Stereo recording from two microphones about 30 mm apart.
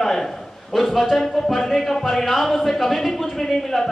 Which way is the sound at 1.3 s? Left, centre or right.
Centre.